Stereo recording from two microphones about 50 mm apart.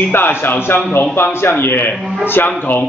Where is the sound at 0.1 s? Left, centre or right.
Left.